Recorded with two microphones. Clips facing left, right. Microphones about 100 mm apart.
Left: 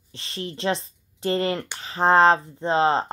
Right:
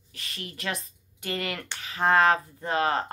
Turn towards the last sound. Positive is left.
turn(degrees=25)  # may be behind; listen again after turning